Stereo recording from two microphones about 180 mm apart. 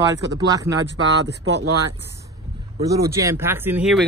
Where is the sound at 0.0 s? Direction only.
20° right (ahead or behind).